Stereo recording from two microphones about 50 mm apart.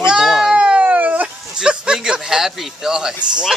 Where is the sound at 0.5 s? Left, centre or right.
Right.